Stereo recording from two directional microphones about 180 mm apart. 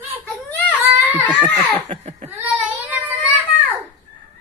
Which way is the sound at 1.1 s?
10° right (ahead or behind).